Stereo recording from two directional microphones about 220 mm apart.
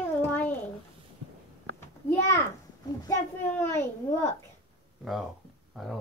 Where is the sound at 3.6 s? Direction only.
10° left (ahead or behind).